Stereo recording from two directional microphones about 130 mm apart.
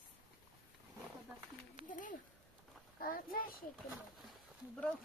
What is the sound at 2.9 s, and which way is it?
Speech, 90° left.